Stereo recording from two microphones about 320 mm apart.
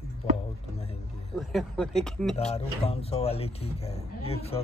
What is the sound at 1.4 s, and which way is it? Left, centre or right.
Speech, centre.